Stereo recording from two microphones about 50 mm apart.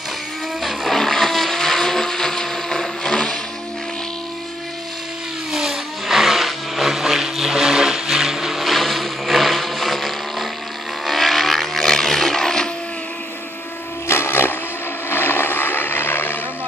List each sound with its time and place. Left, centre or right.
0.6 s blender: centre
5.5 s vehicle: centre
14.0 s a sound: left
15.0 s vehicle: left